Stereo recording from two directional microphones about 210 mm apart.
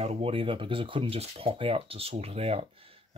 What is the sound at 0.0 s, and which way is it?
Speech, 30° right (ahead or behind).